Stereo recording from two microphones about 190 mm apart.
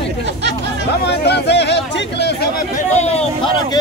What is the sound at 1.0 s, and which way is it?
Speech, 60° left (ahead or behind).